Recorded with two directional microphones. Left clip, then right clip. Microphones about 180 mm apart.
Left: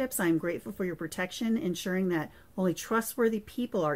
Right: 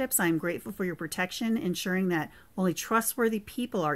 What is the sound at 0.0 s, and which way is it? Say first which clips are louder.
Speech: right 1 dB; 30° right (ahead or behind).